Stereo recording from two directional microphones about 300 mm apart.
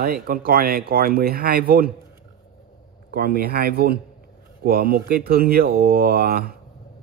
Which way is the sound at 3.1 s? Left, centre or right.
Right.